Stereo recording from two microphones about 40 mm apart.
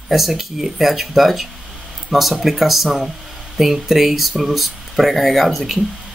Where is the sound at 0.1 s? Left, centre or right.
Centre.